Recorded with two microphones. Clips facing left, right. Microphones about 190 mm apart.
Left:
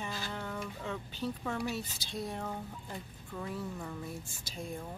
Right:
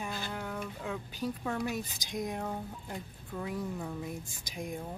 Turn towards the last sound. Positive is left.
turn(degrees=-15)  # may be behind; listen again after turning